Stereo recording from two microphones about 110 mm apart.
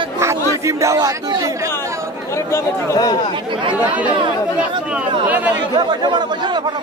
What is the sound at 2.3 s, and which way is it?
Speech, 30° left (ahead or behind).